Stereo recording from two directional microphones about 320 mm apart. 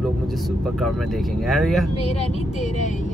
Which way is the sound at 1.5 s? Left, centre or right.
Centre.